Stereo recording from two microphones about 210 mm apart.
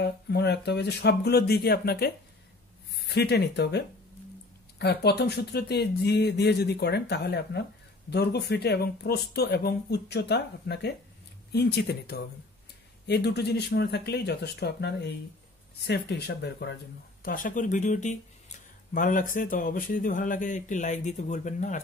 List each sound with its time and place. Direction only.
0.0 s speech: 55° left (ahead or behind)
17.2 s speech: 40° left (ahead or behind)